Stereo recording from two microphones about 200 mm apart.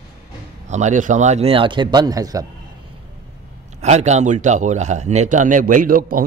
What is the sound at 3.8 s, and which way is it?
A man's voice, 35° right (ahead or behind).